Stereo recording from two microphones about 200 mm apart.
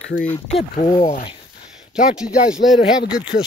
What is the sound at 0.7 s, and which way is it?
Speech, 25° left (ahead or behind).